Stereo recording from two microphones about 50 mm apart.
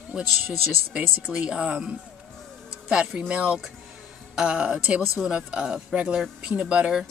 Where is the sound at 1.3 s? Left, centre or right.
Centre.